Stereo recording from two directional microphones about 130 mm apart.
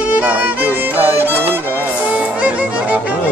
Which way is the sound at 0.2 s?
15° right (ahead or behind).